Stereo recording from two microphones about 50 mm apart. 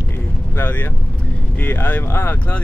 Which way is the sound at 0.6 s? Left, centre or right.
Left.